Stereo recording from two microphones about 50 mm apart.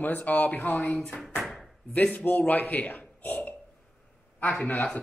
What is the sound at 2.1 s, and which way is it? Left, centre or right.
Speech, left.